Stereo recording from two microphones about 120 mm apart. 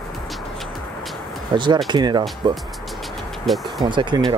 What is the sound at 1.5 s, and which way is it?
Speech, 40° right (ahead or behind).